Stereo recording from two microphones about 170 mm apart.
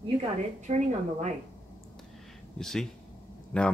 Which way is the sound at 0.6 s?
40° right (ahead or behind).